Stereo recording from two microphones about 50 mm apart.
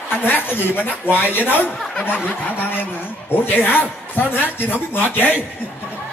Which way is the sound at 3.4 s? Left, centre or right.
Left.